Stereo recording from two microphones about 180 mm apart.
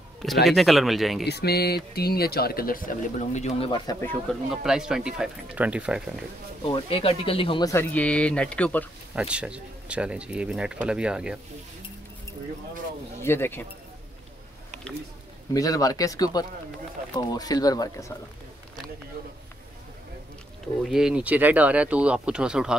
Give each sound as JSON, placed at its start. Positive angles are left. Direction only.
{"t": 0.5, "sound": "speech", "side_deg": 0}
{"t": 1.2, "sound": "speech", "side_deg": 65}
{"t": 4.0, "sound": "speech", "side_deg": 10}
{"t": 4.5, "sound": "speech", "side_deg": -5}
{"t": 6.6, "sound": "speech", "side_deg": 30}
{"t": 7.6, "sound": "speech", "side_deg": 15}
{"t": 9.1, "sound": "speech", "side_deg": -5}
{"t": 13.2, "sound": "speech", "side_deg": 15}
{"t": 15.5, "sound": "speech", "side_deg": 20}
{"t": 20.8, "sound": "speech", "side_deg": -5}